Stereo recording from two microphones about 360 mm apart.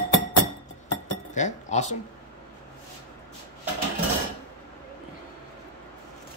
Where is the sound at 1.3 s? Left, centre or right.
Centre.